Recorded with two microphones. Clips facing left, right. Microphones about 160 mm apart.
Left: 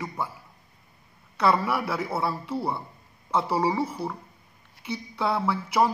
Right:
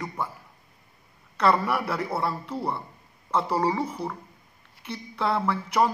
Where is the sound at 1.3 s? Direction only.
10° left (ahead or behind).